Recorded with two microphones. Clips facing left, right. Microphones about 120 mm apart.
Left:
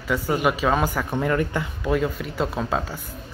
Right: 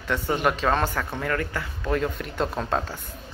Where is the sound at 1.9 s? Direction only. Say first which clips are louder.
Left 2 dB; 5° left (ahead or behind).